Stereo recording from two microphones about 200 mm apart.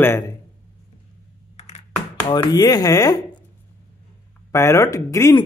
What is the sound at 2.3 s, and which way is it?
Speech, 20° left (ahead or behind).